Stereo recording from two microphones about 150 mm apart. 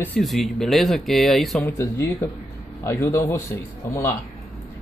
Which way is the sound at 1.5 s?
10° left (ahead or behind).